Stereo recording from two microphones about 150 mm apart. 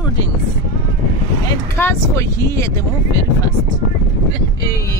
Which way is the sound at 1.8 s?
20° left (ahead or behind).